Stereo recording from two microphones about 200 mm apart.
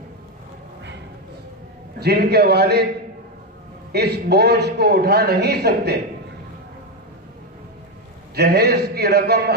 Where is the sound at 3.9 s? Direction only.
55° right (ahead or behind).